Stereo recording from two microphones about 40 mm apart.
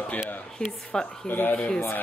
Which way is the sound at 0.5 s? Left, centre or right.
Centre.